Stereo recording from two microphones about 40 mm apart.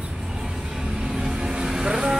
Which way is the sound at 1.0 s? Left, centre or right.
Centre.